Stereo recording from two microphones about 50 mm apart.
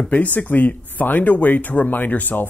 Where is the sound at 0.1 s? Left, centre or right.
Left.